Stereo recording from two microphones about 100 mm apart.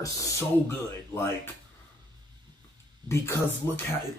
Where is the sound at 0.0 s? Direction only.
30° left (ahead or behind).